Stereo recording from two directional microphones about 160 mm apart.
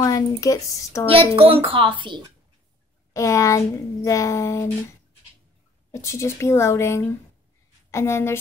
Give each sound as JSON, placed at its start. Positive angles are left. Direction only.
{"t": 0.0, "sound": "a child's voice", "side_deg": 20}
{"t": 1.0, "sound": "a child's voice", "side_deg": -35}
{"t": 3.1, "sound": "a child's voice", "side_deg": 20}
{"t": 5.9, "sound": "speech", "side_deg": 20}